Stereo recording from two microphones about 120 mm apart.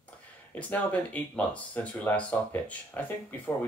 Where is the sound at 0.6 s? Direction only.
15° left (ahead or behind).